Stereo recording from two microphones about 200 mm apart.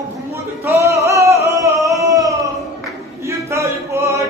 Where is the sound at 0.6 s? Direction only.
15° right (ahead or behind).